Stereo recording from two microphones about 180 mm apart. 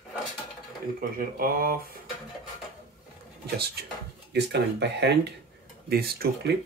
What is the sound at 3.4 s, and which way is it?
Speech, 65° right (ahead or behind).